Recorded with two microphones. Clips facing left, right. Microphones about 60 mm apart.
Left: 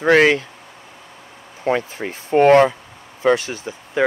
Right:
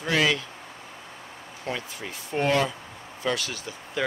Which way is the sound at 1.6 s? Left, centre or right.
Left.